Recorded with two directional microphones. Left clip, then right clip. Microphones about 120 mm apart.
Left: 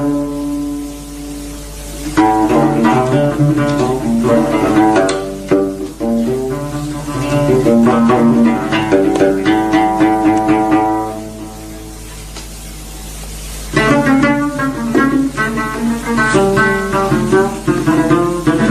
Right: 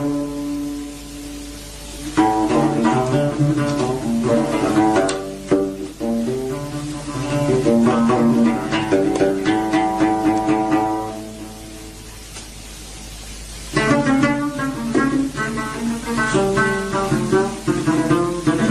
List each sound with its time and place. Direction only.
2.1 s music: 30° left (ahead or behind)
13.7 s music: 30° left (ahead or behind)